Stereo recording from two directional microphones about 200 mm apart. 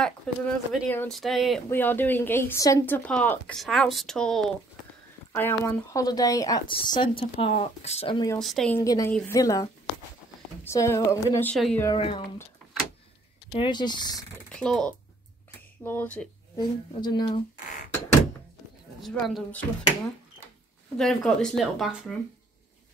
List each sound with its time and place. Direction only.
0.0 s speech: 5° left (ahead or behind); by 8.3 s 25° left (ahead or behind)
8.4 s speech: centre (ahead or behind)
8.8 s speech: 20° left (ahead or behind)
11.8 s speech: 25° left (ahead or behind)
13.5 s speech: 25° left (ahead or behind)
14.5 s speech: 5° left (ahead or behind)
16.5 s speech: 20° left (ahead or behind)
19.0 s speech: centre (ahead or behind)
21.0 s speech: 5° left (ahead or behind)